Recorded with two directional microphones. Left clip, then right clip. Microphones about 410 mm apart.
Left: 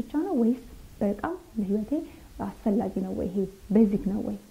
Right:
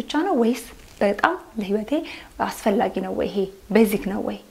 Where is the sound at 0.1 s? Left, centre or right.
Centre.